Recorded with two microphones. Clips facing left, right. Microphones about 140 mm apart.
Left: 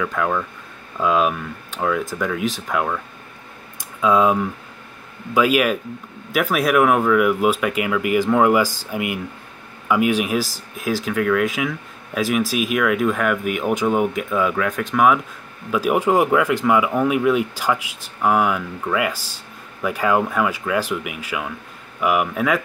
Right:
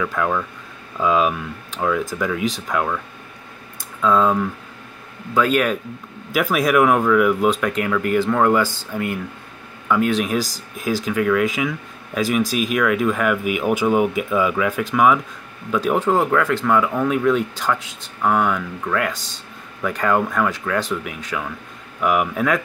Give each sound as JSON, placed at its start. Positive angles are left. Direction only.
{"t": 0.0, "sound": "speech", "side_deg": 0}
{"t": 4.0, "sound": "speech", "side_deg": 10}